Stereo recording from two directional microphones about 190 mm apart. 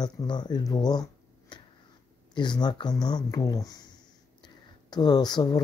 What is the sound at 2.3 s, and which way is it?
Speech, 25° left (ahead or behind).